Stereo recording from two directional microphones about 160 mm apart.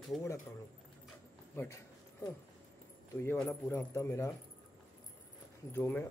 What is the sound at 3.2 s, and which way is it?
Speech, 15° left (ahead or behind).